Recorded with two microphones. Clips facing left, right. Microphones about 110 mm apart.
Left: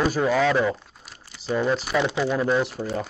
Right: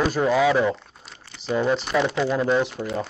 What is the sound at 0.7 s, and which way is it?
Crumpling, 5° left (ahead or behind).